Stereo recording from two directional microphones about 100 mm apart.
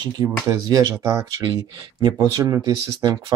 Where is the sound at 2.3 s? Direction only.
40° right (ahead or behind).